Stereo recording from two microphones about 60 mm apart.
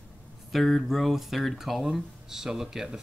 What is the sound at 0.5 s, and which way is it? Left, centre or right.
Speech, centre.